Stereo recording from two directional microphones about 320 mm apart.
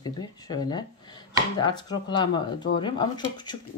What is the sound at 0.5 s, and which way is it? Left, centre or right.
Speech, centre.